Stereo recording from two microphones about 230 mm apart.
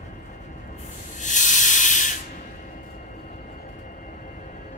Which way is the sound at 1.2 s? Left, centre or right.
Left.